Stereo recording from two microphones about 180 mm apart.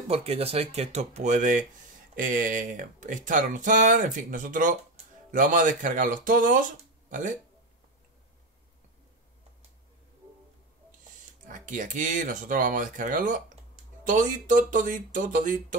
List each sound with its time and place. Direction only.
0.1 s speech: 35° right (ahead or behind)
11.4 s speech: 45° right (ahead or behind)